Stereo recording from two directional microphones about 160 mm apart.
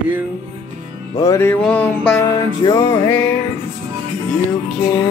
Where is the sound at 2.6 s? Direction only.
25° left (ahead or behind).